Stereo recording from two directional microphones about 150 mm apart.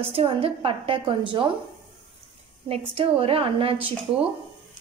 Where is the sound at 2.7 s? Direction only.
40° right (ahead or behind).